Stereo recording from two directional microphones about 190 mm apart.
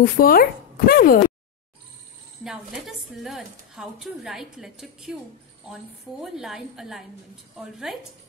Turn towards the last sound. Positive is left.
turn(degrees=0)  # may be behind; listen again after turning